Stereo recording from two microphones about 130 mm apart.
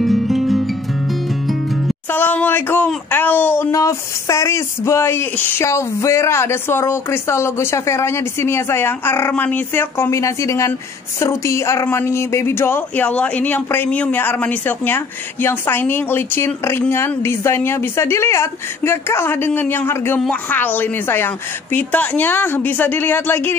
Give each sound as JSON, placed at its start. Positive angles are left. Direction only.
{"t": 0.0, "sound": "music", "side_deg": 0}
{"t": 2.1, "sound": "a sound", "side_deg": 15}
{"t": 3.1, "sound": "speech", "side_deg": 15}